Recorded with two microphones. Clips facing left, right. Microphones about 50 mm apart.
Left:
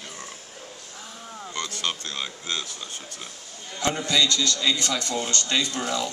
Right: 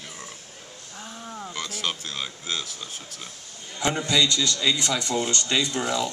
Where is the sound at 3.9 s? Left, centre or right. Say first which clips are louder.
Even; centre.